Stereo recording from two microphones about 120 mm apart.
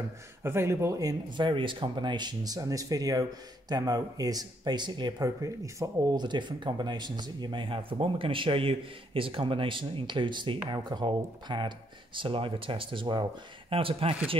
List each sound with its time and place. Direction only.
0.4 s speech: 20° right (ahead or behind)
1.4 s speech: 45° right (ahead or behind); by 6.2 s 25° right (ahead or behind)
6.2 s speech: 40° right (ahead or behind)